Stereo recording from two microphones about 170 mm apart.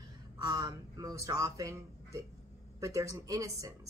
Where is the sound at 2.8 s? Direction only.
20° right (ahead or behind).